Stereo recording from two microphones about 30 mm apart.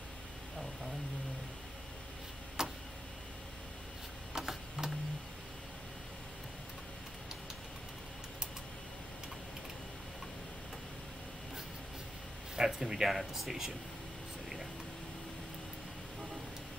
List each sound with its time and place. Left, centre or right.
2.6 s tick-tock: right
4.3 s a sound: centre
12.5 s speech: centre